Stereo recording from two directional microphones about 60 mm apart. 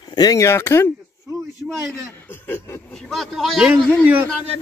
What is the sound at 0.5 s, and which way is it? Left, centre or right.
Speech, left.